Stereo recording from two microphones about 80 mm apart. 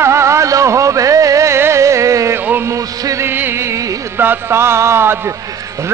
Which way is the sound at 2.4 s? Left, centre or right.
Right.